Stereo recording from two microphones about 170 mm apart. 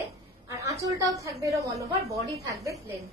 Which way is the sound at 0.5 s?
20° right (ahead or behind).